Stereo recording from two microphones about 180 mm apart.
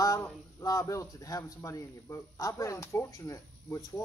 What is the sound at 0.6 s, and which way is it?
A man's voice, 20° left (ahead or behind).